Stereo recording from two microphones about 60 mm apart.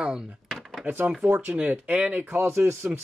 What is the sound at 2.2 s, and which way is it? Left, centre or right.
Speech, right.